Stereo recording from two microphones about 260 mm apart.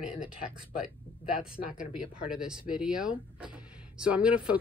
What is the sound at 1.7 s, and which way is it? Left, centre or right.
Speech, centre.